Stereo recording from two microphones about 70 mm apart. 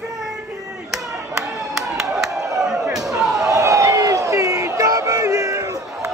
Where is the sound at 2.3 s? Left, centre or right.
Right.